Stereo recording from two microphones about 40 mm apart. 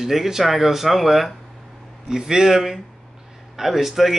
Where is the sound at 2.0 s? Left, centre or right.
Centre.